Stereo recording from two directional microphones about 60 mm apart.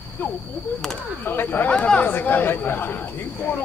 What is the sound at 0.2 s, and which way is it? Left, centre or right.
Speech, left.